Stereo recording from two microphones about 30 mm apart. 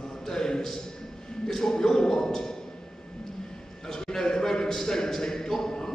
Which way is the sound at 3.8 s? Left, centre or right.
Left.